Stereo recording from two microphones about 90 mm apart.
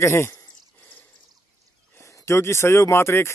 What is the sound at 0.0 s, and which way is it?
Speech, 30° left (ahead or behind).